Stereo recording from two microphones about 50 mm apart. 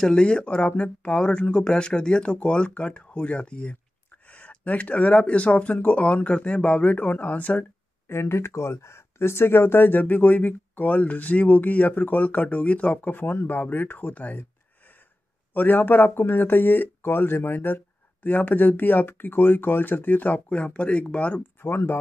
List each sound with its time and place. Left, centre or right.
0.0 s speech: centre
6.8 s speech: left
8.1 s speech: left
21.4 s speech: left